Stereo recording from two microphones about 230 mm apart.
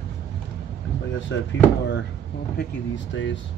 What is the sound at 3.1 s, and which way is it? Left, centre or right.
Speech, left.